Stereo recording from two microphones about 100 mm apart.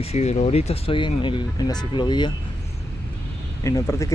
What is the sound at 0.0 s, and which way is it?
Speech, 90° left.